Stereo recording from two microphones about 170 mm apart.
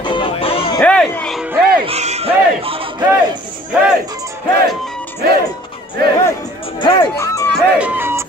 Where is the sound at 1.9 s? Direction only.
40° right (ahead or behind).